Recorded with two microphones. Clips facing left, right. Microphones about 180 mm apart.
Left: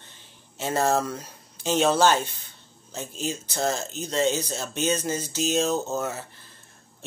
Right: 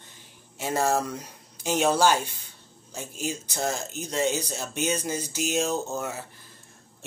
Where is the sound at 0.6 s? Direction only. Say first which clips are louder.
Left 2 dB; 10° right (ahead or behind).